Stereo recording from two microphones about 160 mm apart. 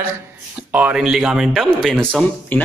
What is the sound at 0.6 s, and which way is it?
Speech, 10° right (ahead or behind).